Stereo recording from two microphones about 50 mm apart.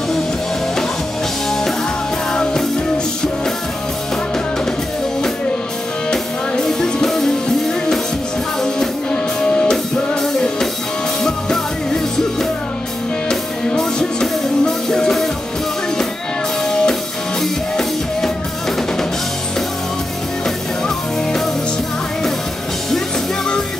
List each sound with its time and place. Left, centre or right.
2.3 s music: centre
6.5 s music: centre
16.6 s music: centre